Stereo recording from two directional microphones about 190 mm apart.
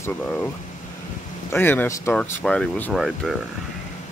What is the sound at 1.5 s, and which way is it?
Speech, 10° left (ahead or behind).